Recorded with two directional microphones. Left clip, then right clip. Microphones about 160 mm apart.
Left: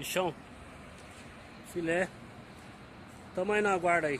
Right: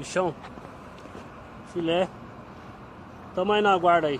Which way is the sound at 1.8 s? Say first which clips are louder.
Right 6 dB; 10° left (ahead or behind).